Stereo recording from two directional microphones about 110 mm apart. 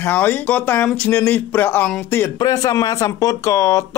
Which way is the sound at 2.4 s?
35° left (ahead or behind).